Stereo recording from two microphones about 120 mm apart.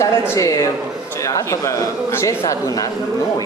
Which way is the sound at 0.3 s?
25° left (ahead or behind).